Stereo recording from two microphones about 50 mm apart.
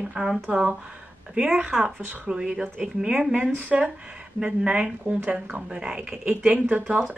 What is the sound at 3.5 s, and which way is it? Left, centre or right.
Speech, right.